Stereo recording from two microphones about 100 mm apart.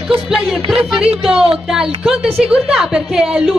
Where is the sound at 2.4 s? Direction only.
5° right (ahead or behind).